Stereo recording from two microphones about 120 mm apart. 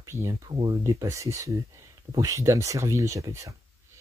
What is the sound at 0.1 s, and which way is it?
Speech, 25° right (ahead or behind).